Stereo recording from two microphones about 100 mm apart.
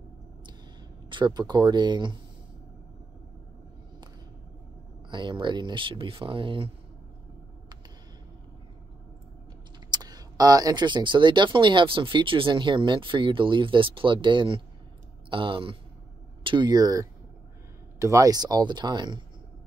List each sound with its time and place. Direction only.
1.1 s speech: 45° right (ahead or behind)
5.1 s speech: 50° right (ahead or behind)
9.8 s speech: 45° right (ahead or behind); by 15.8 s 60° right (ahead or behind)
16.4 s speech: 50° right (ahead or behind); by 18.3 s 30° right (ahead or behind)
18.3 s speech: 40° right (ahead or behind)